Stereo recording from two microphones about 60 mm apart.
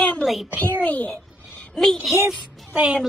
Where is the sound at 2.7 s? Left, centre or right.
Centre.